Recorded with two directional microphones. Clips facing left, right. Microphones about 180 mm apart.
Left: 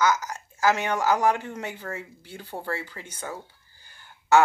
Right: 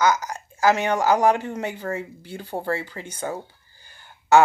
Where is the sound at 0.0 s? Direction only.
15° right (ahead or behind).